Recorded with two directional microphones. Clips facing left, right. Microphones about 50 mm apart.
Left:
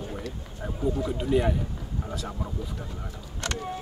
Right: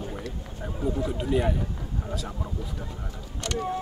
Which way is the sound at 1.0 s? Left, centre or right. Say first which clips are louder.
Left 1 dB; centre.